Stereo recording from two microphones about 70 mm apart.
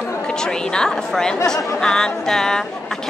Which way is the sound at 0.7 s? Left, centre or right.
Centre.